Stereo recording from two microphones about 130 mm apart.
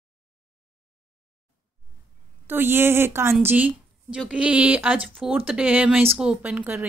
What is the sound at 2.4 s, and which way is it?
A woman's voice, 15° right (ahead or behind).